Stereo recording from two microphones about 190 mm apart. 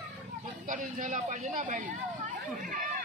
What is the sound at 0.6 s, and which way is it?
Speech, 40° right (ahead or behind).